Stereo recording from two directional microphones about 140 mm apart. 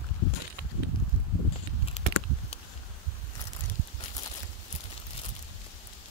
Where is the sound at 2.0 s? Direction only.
55° left (ahead or behind).